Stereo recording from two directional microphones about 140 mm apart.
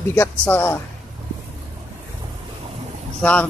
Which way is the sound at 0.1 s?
15° left (ahead or behind).